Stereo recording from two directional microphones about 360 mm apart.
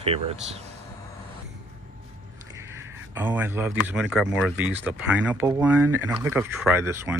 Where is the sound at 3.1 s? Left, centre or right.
Centre.